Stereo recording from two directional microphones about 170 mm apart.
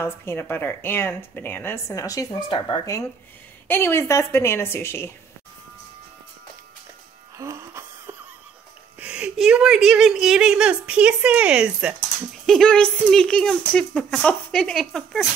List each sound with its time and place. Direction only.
0.0 s speech: 15° left (ahead or behind)
3.6 s speech: 10° left (ahead or behind)
7.3 s wheeze: 15° right (ahead or behind)
9.0 s a woman's voice: 5° right (ahead or behind)